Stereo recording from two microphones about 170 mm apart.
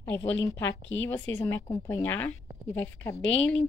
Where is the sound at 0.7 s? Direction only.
90° left.